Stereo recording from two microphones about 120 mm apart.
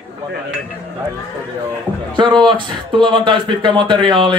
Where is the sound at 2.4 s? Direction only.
45° right (ahead or behind).